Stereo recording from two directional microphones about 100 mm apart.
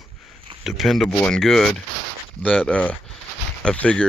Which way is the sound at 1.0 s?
10° left (ahead or behind).